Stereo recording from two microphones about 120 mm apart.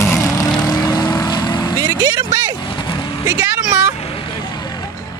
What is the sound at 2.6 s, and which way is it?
Vehicle, 40° left (ahead or behind).